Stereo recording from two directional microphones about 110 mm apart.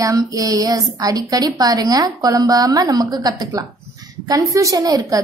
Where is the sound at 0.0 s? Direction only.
30° right (ahead or behind).